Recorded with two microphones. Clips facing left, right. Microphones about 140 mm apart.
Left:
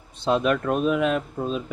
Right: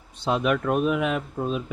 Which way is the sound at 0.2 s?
10° right (ahead or behind).